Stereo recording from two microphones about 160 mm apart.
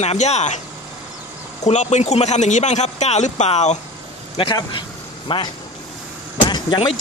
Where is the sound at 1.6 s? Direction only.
45° left (ahead or behind).